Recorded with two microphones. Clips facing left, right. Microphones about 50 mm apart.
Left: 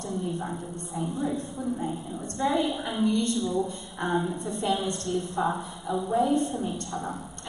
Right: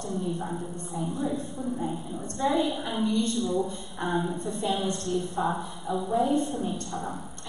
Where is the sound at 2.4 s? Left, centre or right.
Left.